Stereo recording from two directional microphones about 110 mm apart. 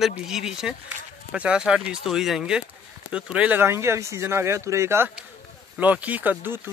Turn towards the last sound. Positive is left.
turn(degrees=-15)  # may be behind; listen again after turning